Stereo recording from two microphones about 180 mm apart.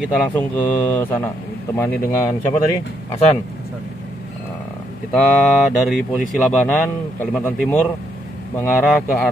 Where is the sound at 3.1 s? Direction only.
35° left (ahead or behind).